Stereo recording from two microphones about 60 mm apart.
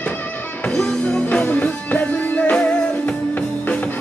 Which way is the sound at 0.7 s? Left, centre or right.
Centre.